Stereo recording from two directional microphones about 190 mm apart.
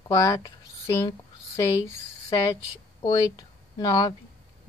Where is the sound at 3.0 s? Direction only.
20° left (ahead or behind).